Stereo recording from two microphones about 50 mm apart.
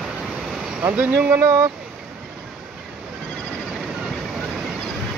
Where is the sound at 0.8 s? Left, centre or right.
Right.